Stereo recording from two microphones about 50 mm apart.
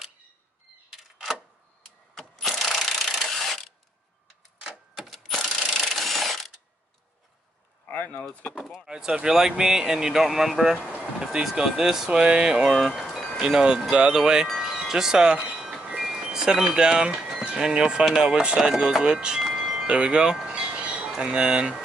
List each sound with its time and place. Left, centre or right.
2.1 s a sound: centre
5.4 s mechanisms: centre
7.9 s a sound: left
8.7 s speech: centre
11.0 s a sound: centre
11.4 s speech: centre
12.9 s chime: centre
13.4 s speech: centre
14.6 s wind chime: centre
16.0 s speech: centre
19.4 s chime: centre
20.0 s speech: centre
20.3 s a sound: centre
21.2 s speech: centre